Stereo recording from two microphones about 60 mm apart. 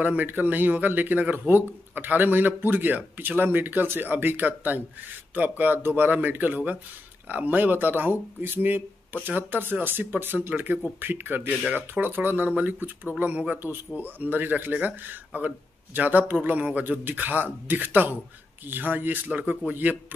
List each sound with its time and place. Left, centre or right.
0.0 s speech: right